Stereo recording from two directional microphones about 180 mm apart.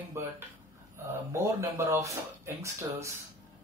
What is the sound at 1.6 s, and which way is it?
Speech, 15° right (ahead or behind).